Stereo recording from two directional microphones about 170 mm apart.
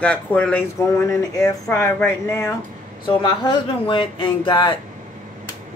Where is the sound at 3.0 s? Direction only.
30° left (ahead or behind).